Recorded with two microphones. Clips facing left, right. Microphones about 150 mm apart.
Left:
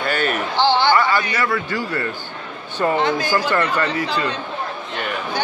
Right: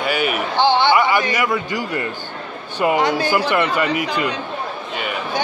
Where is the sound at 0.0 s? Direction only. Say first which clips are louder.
Right 1 dB; 10° right (ahead or behind).